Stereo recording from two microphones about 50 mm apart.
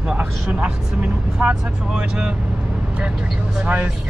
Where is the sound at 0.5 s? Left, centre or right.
Right.